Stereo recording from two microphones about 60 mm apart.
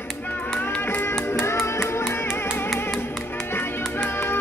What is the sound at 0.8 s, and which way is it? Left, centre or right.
Music, left.